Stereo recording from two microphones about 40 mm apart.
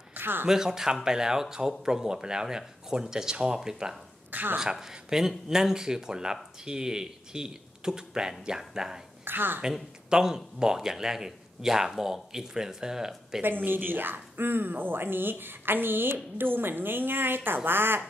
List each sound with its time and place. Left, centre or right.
0.1 s a sound: right
0.5 s speech: centre
4.3 s a sound: right
4.6 s speech: centre
9.2 s a woman's voice: right
10.0 s speech: centre
13.7 s speech: right